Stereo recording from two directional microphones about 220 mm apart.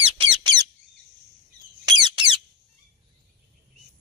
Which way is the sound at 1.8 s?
20° right (ahead or behind).